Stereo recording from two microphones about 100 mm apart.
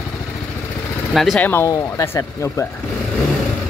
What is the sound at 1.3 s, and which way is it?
Speech, 20° left (ahead or behind).